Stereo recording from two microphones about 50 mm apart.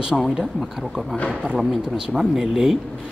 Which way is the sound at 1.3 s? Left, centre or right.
Centre.